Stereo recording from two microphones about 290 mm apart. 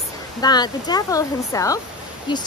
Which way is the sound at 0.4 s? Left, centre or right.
Centre.